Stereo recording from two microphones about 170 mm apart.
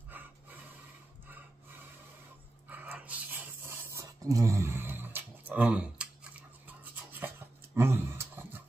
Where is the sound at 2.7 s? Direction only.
10° right (ahead or behind).